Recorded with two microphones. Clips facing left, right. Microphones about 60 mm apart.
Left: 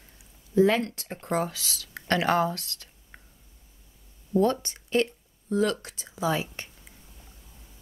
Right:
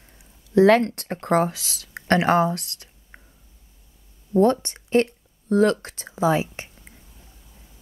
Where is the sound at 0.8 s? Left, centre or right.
Right.